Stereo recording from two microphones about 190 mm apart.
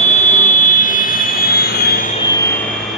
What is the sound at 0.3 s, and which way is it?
Vehicle, 40° left (ahead or behind).